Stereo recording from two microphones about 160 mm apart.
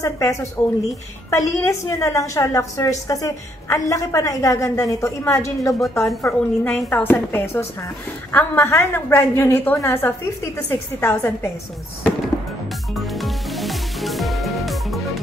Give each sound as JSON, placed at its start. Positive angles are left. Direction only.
{"t": 0.0, "sound": "a woman's voice", "side_deg": 15}
{"t": 13.0, "sound": "music", "side_deg": 0}